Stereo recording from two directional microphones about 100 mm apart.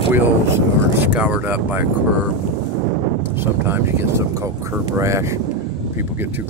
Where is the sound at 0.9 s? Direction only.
15° right (ahead or behind).